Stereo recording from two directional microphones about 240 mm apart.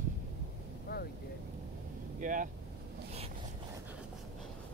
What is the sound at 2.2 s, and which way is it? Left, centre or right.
Speech, right.